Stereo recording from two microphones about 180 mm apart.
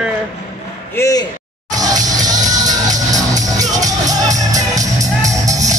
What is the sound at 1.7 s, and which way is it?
Music, 20° right (ahead or behind).